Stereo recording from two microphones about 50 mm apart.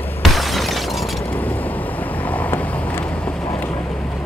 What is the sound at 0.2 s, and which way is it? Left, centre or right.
Shatter, centre.